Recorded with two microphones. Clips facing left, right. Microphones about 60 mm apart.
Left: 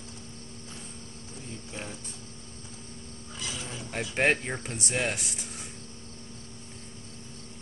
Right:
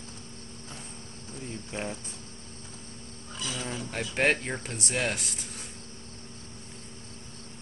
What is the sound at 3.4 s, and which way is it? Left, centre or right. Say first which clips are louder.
Speech: right 4 dB; right.